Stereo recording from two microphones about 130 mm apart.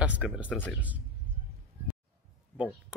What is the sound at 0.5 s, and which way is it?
Speech, 10° left (ahead or behind).